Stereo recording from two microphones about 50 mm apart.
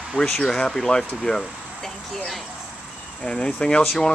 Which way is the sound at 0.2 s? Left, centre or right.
Centre.